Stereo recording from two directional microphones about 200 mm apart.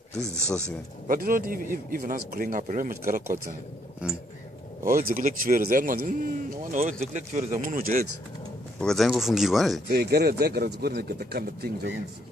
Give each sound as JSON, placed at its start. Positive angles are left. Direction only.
{"t": 1.0, "sound": "a man's voice", "side_deg": -45}
{"t": 4.0, "sound": "speech", "side_deg": -5}
{"t": 4.8, "sound": "a man's voice", "side_deg": -45}
{"t": 8.7, "sound": "speech", "side_deg": 0}
{"t": 9.8, "sound": "a man's voice", "side_deg": -55}